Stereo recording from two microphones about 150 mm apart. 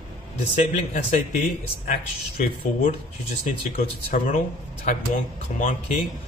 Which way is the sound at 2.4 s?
90° left.